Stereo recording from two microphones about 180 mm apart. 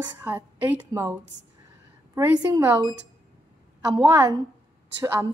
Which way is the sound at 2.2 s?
15° right (ahead or behind).